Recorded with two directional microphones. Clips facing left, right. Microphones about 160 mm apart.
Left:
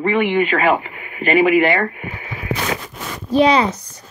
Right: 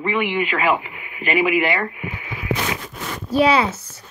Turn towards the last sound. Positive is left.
turn(degrees=-5)  # may be behind; listen again after turning